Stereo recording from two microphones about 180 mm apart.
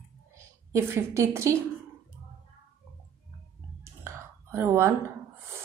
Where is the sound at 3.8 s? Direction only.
15° right (ahead or behind).